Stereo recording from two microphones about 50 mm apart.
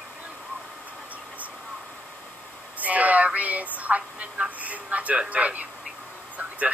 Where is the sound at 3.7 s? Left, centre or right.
Right.